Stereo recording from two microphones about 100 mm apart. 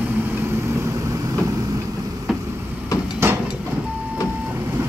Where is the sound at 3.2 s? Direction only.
25° right (ahead or behind).